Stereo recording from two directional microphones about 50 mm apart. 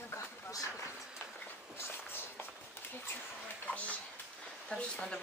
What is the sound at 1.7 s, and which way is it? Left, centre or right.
Walk, left.